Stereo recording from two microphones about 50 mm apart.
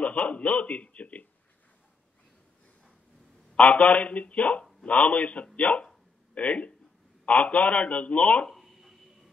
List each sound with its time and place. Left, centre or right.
0.0 s a man's voice: left
3.5 s a man's voice: left
8.5 s a sound: centre